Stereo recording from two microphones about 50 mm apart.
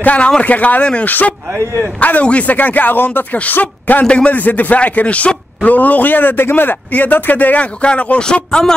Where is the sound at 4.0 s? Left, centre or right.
Left.